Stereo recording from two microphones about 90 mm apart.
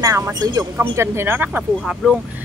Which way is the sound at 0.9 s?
25° right (ahead or behind).